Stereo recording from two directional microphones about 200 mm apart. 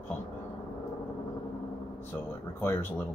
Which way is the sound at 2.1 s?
10° left (ahead or behind).